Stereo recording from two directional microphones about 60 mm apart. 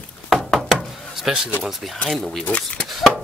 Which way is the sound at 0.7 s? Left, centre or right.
Centre.